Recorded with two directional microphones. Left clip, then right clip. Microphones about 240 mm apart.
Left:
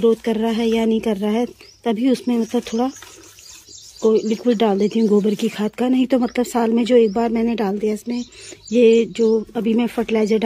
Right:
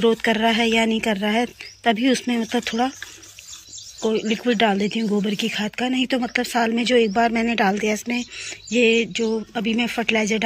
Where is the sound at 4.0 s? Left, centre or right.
Centre.